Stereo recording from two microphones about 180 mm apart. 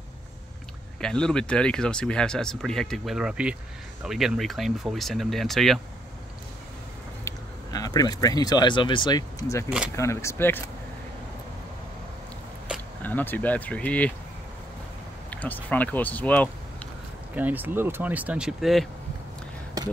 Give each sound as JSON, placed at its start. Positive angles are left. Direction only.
{"t": 1.0, "sound": "speech", "side_deg": 5}
{"t": 7.2, "sound": "speech", "side_deg": 20}
{"t": 13.0, "sound": "speech", "side_deg": 10}
{"t": 15.2, "sound": "speech", "side_deg": 10}
{"t": 17.4, "sound": "speech", "side_deg": -10}